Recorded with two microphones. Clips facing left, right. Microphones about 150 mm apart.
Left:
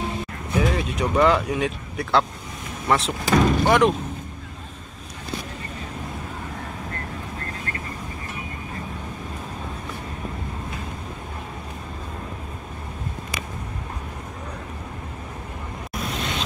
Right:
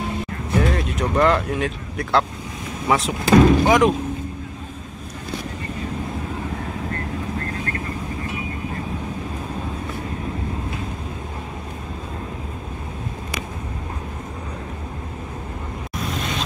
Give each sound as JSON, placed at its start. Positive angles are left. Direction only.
{"t": 0.6, "sound": "speech", "side_deg": 0}